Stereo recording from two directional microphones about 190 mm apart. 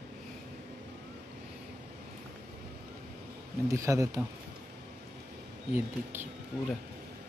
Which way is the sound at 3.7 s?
15° right (ahead or behind).